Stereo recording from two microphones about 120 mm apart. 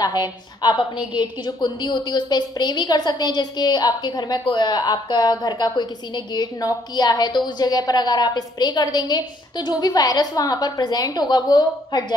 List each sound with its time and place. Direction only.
0.0 s a woman's voice: 35° left (ahead or behind)